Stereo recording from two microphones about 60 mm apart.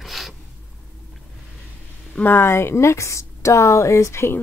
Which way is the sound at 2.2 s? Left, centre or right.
Left.